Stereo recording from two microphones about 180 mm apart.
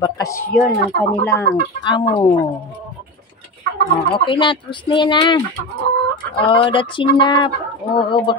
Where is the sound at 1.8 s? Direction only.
25° left (ahead or behind).